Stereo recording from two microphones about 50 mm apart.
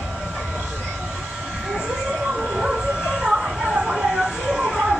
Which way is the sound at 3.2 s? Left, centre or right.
Centre.